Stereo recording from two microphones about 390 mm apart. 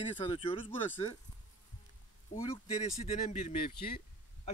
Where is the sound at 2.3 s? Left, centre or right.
Centre.